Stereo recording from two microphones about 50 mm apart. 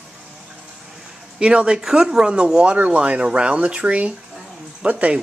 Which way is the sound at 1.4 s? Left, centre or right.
Centre.